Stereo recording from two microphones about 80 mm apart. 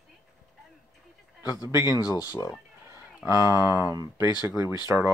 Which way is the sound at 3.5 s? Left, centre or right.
Left.